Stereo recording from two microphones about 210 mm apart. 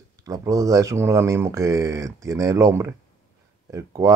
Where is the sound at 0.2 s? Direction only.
15° right (ahead or behind).